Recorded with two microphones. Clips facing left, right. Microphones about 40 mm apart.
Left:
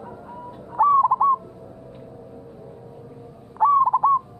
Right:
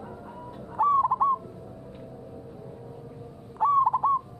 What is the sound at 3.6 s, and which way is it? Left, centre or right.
Owl, centre.